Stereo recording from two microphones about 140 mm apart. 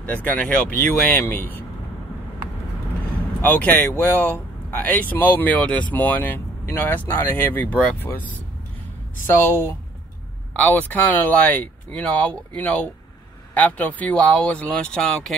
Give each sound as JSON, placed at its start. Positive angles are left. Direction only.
{"t": 0.0, "sound": "speech", "side_deg": 10}
{"t": 3.3, "sound": "speech", "side_deg": 15}